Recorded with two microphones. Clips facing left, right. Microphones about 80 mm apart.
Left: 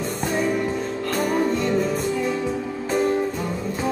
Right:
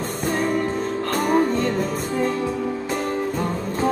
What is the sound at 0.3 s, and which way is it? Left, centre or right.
Music, right.